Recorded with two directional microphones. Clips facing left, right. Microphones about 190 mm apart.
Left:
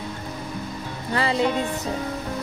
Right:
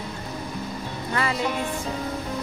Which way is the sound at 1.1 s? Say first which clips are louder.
Left 3 dB; 30° left (ahead or behind).